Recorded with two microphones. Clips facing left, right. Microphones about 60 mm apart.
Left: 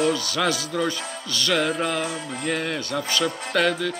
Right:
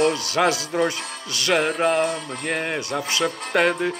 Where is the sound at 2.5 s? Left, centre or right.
Centre.